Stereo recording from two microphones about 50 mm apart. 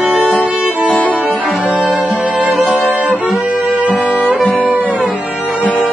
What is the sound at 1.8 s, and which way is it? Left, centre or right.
Music, centre.